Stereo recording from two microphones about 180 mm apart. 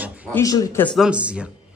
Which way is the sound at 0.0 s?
10° right (ahead or behind).